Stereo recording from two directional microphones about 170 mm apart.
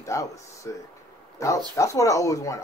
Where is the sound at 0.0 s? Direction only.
20° left (ahead or behind).